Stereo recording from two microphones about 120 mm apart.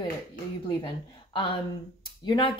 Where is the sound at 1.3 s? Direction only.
45° left (ahead or behind).